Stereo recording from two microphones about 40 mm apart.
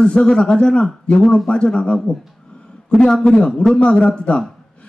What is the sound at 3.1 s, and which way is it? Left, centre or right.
Speech, centre.